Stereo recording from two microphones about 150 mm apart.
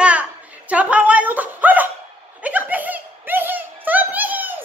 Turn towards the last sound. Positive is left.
turn(degrees=-10)  # may be behind; listen again after turning